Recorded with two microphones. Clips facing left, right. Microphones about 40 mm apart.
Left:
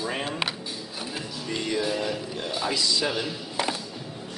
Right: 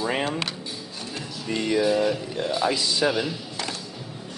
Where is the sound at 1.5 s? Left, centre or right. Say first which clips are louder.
Right 5 dB; centre.